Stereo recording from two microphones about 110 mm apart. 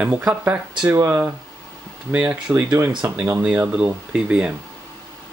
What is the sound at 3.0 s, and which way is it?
Speech, 25° right (ahead or behind).